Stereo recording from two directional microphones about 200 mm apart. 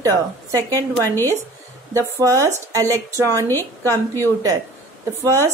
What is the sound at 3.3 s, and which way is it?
Speech, 10° left (ahead or behind).